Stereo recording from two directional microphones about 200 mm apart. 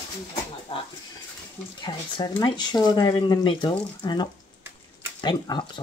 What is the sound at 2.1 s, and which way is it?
Speech, 20° left (ahead or behind).